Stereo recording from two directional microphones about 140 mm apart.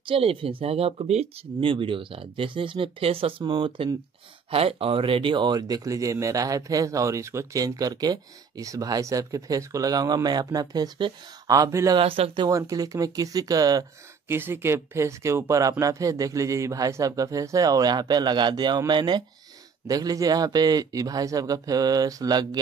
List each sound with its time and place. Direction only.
0.0 s speech: 40° right (ahead or behind); by 12.0 s 25° right (ahead or behind)
12.0 s speech: 40° right (ahead or behind)
12.4 s speech: 25° right (ahead or behind)
14.3 s speech: 15° right (ahead or behind)